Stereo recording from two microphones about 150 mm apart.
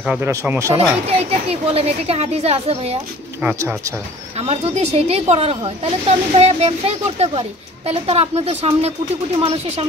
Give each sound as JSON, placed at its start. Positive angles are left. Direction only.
{"t": 0.0, "sound": "speech", "side_deg": -10}
{"t": 0.3, "sound": "speech", "side_deg": -20}
{"t": 0.7, "sound": "speech", "side_deg": -45}
{"t": 4.4, "sound": "speech", "side_deg": -45}